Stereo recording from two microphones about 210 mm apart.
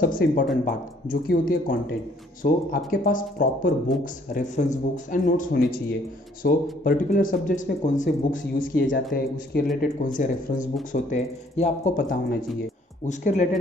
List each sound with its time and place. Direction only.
0.0 s speech: 40° left (ahead or behind)
8.7 s speech: 55° left (ahead or behind); by 13.6 s 35° left (ahead or behind)